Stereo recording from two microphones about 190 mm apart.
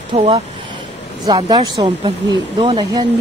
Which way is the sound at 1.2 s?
20° right (ahead or behind).